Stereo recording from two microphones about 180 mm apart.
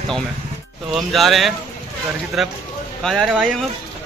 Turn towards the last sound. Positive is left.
turn(degrees=0)  # may be behind; listen again after turning